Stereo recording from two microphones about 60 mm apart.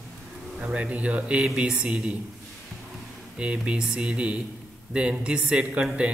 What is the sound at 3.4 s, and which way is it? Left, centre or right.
Speech, centre.